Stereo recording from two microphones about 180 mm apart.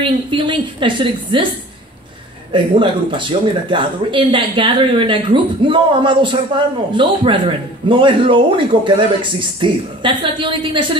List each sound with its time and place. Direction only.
0.0 s speech: 25° right (ahead or behind)
2.5 s speech: 30° right (ahead or behind)